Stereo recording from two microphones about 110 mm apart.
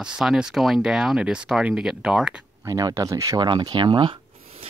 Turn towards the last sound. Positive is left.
turn(degrees=-50)  # may be behind; listen again after turning